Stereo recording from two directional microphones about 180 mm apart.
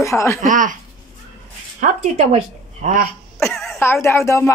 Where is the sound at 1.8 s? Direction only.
40° right (ahead or behind).